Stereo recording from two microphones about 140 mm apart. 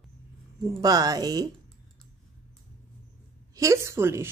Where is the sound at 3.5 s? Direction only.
20° right (ahead or behind).